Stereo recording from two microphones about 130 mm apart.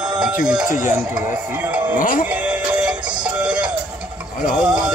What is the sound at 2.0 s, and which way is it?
Music, 90° left.